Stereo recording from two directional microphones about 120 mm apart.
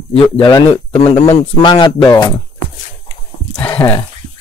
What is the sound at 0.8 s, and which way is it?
Speech, 55° left (ahead or behind).